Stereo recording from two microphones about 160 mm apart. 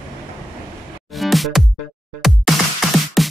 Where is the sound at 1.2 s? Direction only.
Centre (ahead or behind).